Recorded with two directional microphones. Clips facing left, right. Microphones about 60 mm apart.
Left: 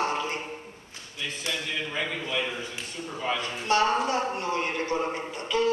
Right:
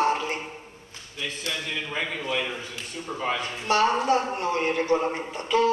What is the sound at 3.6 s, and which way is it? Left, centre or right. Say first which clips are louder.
A woman's voice: right 2 dB; right.